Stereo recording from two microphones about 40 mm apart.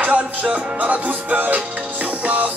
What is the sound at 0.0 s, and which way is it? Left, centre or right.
Music, right.